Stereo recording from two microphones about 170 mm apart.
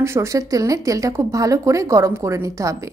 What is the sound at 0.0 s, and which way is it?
A woman's voice, 15° right (ahead or behind).